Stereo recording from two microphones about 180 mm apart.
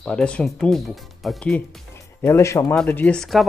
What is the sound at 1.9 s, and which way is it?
Speech, 15° left (ahead or behind).